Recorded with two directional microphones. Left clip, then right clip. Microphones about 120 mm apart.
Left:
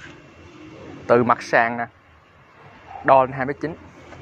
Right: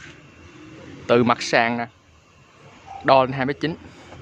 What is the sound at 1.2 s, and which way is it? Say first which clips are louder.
Speech: even; 35° right (ahead or behind).